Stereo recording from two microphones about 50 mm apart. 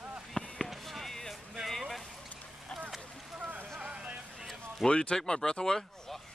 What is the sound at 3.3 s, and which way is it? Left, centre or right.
Boat, right.